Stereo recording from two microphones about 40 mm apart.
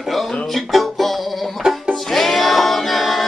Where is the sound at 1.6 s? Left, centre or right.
Centre.